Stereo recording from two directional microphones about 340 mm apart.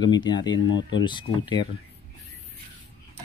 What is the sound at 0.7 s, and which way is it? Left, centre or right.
Speech, left.